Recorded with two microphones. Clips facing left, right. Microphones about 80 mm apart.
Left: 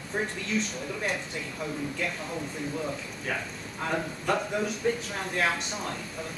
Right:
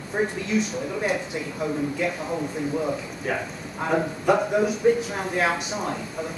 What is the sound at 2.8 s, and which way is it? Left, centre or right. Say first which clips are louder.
Speech: right 6 dB; centre.